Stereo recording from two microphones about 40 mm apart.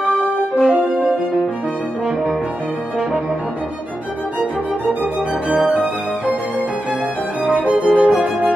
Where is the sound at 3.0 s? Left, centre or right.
Centre.